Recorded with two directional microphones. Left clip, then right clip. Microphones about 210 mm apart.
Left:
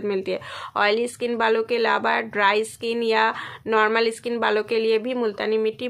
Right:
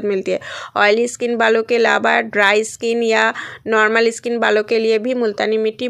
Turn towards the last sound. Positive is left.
turn(degrees=-25)  # may be behind; listen again after turning